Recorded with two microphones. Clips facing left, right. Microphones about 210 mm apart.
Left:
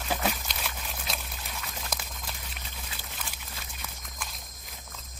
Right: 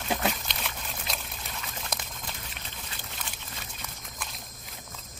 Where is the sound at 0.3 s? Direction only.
Centre (ahead or behind).